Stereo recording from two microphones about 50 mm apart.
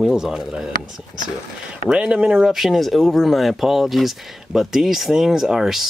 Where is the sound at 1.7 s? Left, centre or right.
Centre.